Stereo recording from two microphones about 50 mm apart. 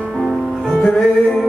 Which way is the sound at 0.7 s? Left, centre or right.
Centre.